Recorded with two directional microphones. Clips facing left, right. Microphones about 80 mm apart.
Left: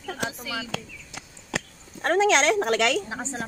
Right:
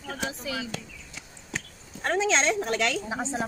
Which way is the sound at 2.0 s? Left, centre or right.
Left.